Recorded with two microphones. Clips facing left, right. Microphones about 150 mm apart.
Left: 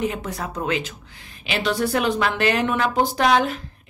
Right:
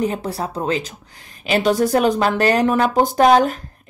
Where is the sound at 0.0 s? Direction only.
35° right (ahead or behind).